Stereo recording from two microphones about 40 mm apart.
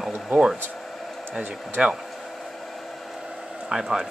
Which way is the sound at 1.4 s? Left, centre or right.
Right.